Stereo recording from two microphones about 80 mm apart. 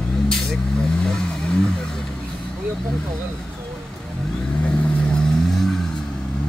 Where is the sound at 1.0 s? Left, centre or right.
Centre.